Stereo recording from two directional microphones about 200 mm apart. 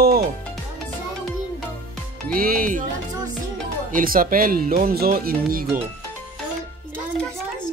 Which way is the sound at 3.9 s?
45° right (ahead or behind).